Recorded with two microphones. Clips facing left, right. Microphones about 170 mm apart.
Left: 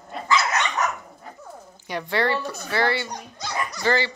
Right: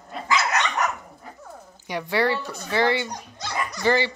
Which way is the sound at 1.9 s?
10° right (ahead or behind).